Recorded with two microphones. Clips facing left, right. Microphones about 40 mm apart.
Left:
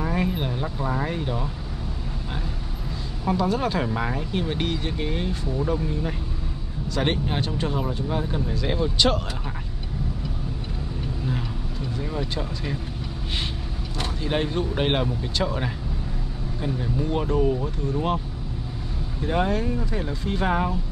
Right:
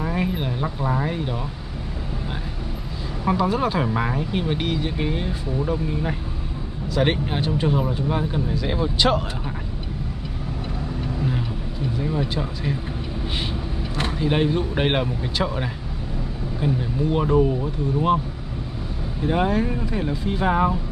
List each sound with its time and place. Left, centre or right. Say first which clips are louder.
0.0 s speech: right 1 dB; centre
3.3 s speech: right 2 dB; centre
11.2 s speech: right 3 dB; centre
13.9 s vehicle: right 4 dB; right
14.2 s speech: right 4 dB; centre
19.2 s speech: right 3 dB; centre